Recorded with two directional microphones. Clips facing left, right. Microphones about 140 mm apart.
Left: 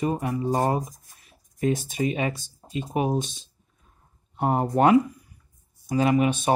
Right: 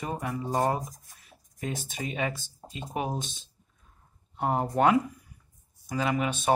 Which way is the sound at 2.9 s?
10° left (ahead or behind).